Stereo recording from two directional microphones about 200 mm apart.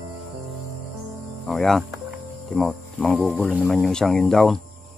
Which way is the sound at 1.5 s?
Centre (ahead or behind).